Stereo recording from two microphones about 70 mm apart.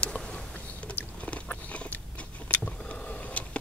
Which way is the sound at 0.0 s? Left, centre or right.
Centre.